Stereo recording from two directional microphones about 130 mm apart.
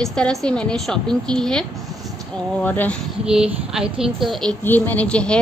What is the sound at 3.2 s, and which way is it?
A woman's voice, 5° right (ahead or behind).